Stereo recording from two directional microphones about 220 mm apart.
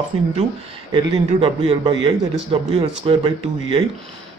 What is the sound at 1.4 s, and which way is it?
A woman's voice, 25° right (ahead or behind).